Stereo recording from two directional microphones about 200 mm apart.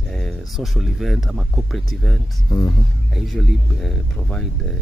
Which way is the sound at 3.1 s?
Centre (ahead or behind).